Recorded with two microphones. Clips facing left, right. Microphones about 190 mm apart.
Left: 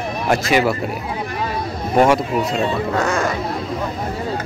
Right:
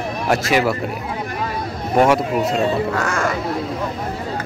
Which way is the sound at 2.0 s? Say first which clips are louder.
Even; 5° right (ahead or behind).